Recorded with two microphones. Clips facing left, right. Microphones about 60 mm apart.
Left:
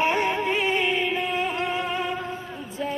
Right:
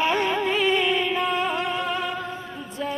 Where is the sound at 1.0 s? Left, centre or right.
Centre.